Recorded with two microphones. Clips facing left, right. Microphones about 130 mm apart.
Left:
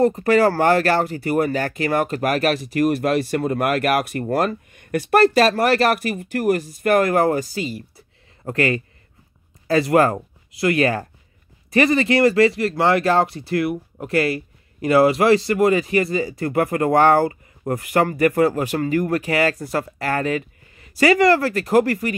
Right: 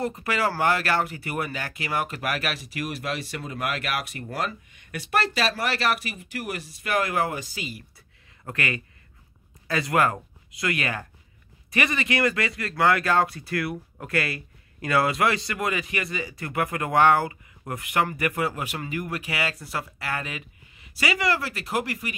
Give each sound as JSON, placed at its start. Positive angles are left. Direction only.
{"t": 0.0, "sound": "speech", "side_deg": 40}